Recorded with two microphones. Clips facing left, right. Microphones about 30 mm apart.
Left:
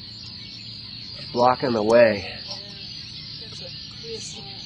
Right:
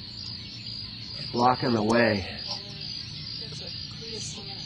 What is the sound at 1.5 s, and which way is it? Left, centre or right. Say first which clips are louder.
Speech: left 6 dB; centre.